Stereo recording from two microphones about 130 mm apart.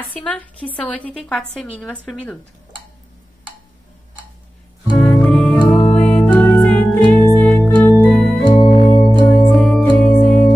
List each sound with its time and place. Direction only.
0.2 s a woman's voice: 10° left (ahead or behind)
4.9 s music: 5° left (ahead or behind)
8.0 s organ: 10° left (ahead or behind)
9.5 s music: 5° left (ahead or behind)